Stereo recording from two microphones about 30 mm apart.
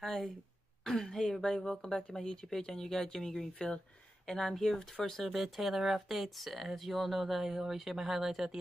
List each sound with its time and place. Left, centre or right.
0.0 s speech: centre
5.3 s speech: centre